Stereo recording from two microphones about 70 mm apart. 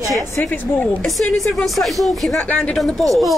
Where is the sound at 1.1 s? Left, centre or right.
Centre.